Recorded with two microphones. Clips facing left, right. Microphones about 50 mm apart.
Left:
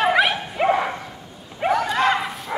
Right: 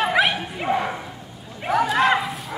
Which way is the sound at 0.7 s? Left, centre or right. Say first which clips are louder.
Left 1 dB; centre.